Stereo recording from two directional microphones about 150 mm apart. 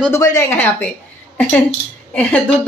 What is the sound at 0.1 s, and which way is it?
Speech, 20° left (ahead or behind).